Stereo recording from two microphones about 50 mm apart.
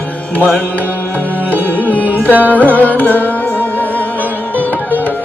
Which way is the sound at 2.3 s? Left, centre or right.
Right.